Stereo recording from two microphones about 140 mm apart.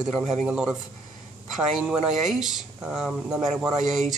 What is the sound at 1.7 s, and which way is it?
Speech, 5° right (ahead or behind).